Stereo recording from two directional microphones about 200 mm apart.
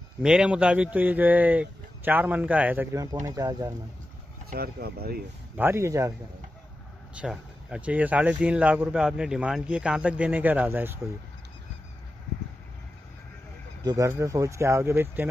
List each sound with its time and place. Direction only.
0.2 s speech: 5° right (ahead or behind)
4.5 s speech: 50° right (ahead or behind)
5.6 s speech: 15° right (ahead or behind)
7.2 s speech: 5° right (ahead or behind)
13.8 s speech: 15° right (ahead or behind)